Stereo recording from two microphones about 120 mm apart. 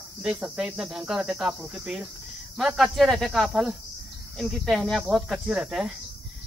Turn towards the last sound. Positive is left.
turn(degrees=-5)  # may be behind; listen again after turning